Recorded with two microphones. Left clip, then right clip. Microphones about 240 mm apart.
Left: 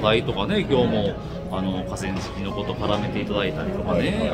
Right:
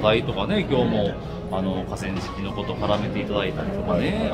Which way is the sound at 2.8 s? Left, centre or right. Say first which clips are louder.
Right 2 dB; centre.